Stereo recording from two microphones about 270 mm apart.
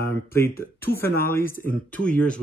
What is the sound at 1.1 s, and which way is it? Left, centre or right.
Speech, left.